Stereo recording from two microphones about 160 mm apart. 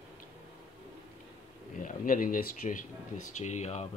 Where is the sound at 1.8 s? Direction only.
60° left (ahead or behind).